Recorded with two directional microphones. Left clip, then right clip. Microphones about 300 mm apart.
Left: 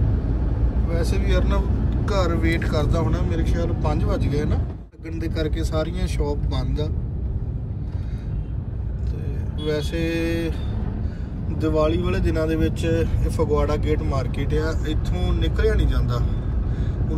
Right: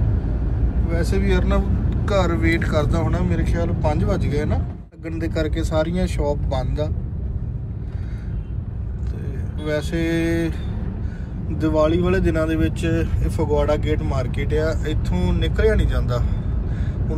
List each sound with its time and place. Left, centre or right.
0.8 s speech: centre
5.7 s speech: centre
9.6 s speech: centre
11.5 s speech: centre